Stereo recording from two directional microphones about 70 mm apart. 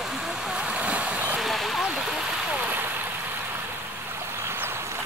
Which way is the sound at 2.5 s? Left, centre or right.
Right.